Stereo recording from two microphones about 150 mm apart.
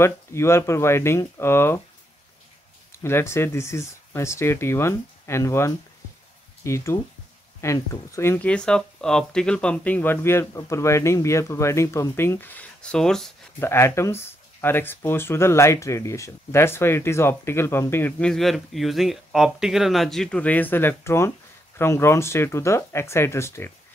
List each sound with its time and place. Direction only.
0.0 s speech: 15° left (ahead or behind)
3.0 s speech: 15° left (ahead or behind)
13.6 s speech: 15° left (ahead or behind)
18.3 s speech: centre (ahead or behind); by 23.7 s 15° left (ahead or behind)